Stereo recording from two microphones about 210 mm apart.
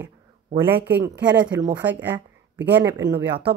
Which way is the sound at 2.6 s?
55° right (ahead or behind).